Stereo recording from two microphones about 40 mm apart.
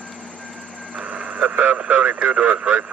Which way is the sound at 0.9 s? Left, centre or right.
Right.